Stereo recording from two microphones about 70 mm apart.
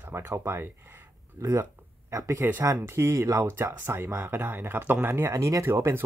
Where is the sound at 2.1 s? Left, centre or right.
Right.